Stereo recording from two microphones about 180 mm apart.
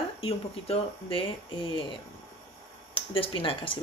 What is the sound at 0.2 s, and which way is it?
Speech, 30° left (ahead or behind).